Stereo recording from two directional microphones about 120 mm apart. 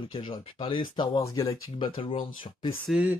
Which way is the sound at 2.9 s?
10° right (ahead or behind).